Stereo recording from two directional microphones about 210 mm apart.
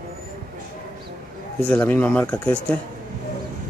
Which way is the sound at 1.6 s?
10° left (ahead or behind).